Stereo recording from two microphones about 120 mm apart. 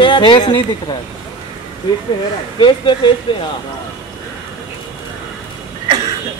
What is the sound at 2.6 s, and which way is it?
Speech, 40° left (ahead or behind).